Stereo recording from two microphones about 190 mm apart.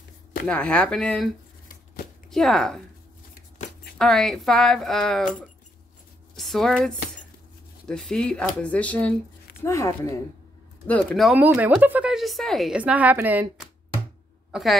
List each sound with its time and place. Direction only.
0.5 s speech: 5° left (ahead or behind)
2.3 s speech: centre (ahead or behind)
4.0 s speech: 5° left (ahead or behind)